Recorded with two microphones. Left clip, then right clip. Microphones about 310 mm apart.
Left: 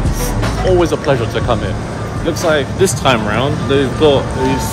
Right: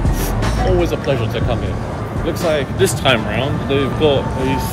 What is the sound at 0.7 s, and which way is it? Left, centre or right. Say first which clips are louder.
Speech: left 6 dB; centre.